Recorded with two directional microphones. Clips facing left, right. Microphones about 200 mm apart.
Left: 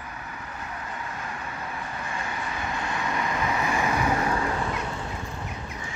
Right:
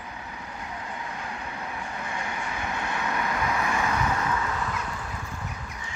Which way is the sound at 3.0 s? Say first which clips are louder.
Left 1 dB; 10° left (ahead or behind).